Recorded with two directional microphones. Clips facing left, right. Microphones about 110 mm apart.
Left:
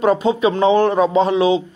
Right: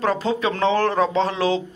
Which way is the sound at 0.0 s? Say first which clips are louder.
Left 6 dB; 20° left (ahead or behind).